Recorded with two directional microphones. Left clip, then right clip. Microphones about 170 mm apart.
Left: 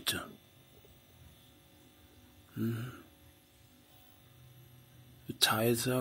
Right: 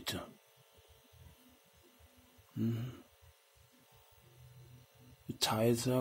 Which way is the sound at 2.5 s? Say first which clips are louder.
Left 1 dB; 20° right (ahead or behind).